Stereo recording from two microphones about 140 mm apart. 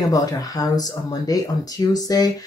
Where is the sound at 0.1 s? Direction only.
25° left (ahead or behind).